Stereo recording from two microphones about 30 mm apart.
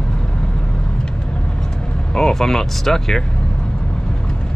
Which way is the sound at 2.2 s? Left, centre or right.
Centre.